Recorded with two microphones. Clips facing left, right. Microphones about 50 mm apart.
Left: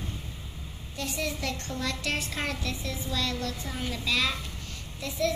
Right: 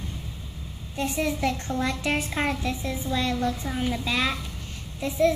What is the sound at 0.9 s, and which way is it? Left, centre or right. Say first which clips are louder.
A child's voice: right 6 dB; right.